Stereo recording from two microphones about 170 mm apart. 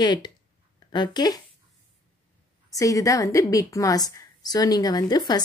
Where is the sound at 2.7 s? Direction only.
20° left (ahead or behind).